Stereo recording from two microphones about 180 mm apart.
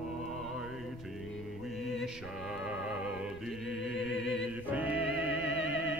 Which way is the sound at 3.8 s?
Centre (ahead or behind).